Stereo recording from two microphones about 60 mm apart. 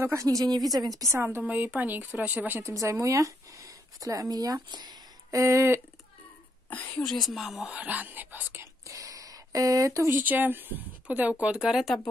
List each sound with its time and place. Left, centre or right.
0.0 s a woman's voice: right
1.1 s speech: right
1.4 s a woman's voice: right
2.6 s speech: right
6.7 s speech: left
7.0 s speech: centre
7.6 s a woman's voice: right
8.8 s a sound: right
10.0 s a woman's voice: right
11.7 s speech: centre